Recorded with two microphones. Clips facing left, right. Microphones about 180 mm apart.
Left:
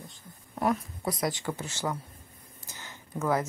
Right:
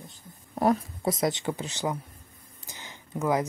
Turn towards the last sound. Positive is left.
turn(degrees=-15)  # may be behind; listen again after turning